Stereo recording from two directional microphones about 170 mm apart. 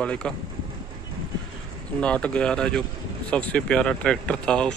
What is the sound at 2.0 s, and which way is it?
Speech, 5° left (ahead or behind).